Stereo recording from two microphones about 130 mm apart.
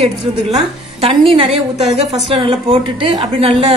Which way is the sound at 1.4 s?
55° right (ahead or behind).